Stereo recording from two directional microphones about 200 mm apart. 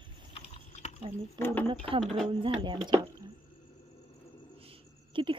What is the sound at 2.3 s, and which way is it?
Speech, 25° right (ahead or behind).